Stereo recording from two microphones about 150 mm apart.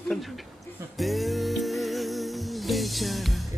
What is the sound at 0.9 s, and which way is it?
Music, centre (ahead or behind).